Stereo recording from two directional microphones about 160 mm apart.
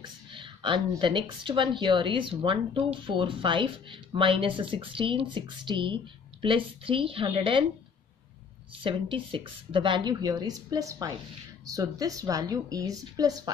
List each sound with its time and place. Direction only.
0.0 s speech: 30° right (ahead or behind)
8.8 s a woman's voice: 30° right (ahead or behind)